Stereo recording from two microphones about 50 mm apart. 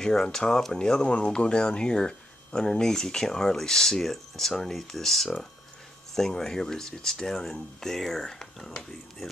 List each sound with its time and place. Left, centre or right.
0.0 s speech: centre